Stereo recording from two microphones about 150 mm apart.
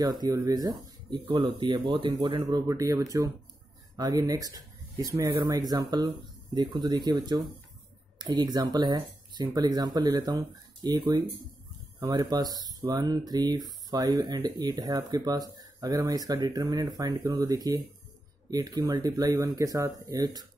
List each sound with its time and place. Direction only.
0.0 s speech: 25° right (ahead or behind)